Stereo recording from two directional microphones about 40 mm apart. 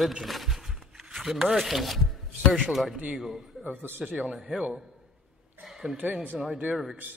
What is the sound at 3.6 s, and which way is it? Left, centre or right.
Speech, right.